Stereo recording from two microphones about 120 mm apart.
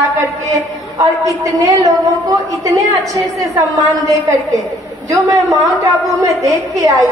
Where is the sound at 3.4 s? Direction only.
30° right (ahead or behind).